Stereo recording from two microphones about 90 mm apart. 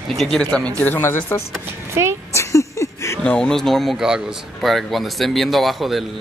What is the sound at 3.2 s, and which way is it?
A woman's voice, 10° left (ahead or behind).